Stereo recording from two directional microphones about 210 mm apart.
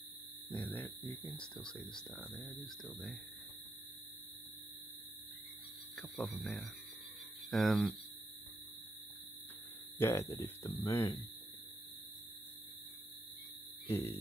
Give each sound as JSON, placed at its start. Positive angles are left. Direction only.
{"t": 0.7, "sound": "speech", "side_deg": 10}
{"t": 5.9, "sound": "speech", "side_deg": 0}
{"t": 9.9, "sound": "speech", "side_deg": 10}
{"t": 13.8, "sound": "speech", "side_deg": 15}